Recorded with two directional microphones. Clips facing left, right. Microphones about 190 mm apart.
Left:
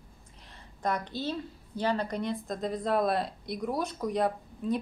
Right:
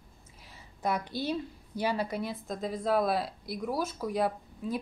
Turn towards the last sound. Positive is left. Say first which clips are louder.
# left 3 dB
turn(degrees=-5)  # may be behind; listen again after turning